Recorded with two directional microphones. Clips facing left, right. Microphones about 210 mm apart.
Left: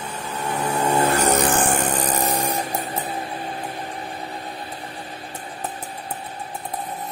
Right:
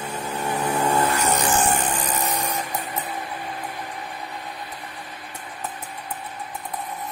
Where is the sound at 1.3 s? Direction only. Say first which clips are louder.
Left 2 dB; 55° left (ahead or behind).